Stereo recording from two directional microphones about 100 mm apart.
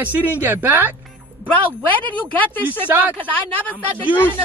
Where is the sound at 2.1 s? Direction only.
15° left (ahead or behind).